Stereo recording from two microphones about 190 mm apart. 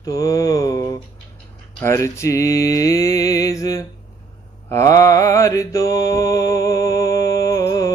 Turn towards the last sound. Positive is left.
turn(degrees=20)  # may be behind; listen again after turning